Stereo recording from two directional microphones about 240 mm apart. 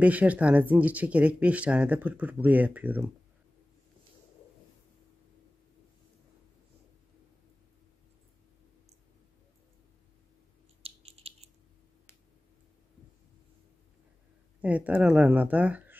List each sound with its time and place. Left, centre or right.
0.0 s speech: centre
10.8 s a sound: right
14.6 s speech: centre